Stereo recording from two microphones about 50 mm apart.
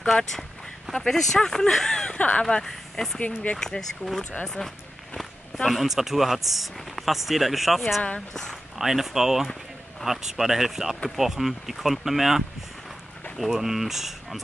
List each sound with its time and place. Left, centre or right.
0.1 s speech: centre
2.1 s speech: left
2.5 s speech: centre
3.2 s speech: left
3.5 s speech: centre
5.1 s speech: centre
8.3 s speech: centre
8.7 s speech: centre